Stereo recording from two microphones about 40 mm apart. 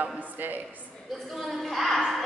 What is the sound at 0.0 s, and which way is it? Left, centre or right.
Speech, right.